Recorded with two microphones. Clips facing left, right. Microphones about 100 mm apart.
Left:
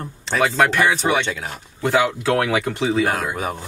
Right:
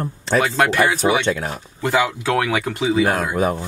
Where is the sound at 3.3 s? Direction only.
40° right (ahead or behind).